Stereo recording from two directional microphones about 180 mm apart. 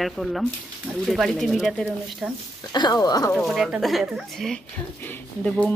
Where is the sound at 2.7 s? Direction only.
25° left (ahead or behind).